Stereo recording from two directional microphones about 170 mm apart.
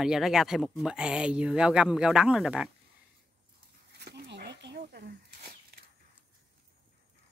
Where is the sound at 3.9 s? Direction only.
80° right.